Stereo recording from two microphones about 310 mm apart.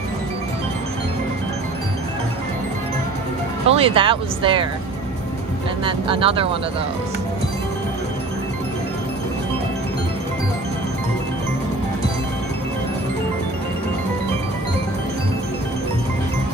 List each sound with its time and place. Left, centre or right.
3.6 s speech: centre
5.9 s speech: centre